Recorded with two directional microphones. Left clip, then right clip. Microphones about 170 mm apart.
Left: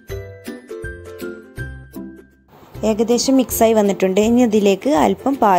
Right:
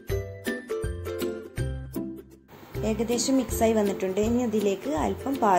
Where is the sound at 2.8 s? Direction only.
45° left (ahead or behind).